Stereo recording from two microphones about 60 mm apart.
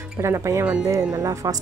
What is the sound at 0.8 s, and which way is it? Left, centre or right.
Speech, right.